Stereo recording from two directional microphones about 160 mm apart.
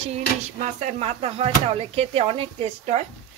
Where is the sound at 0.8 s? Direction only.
40° right (ahead or behind).